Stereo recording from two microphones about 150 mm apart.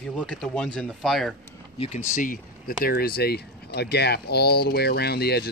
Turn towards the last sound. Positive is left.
turn(degrees=90)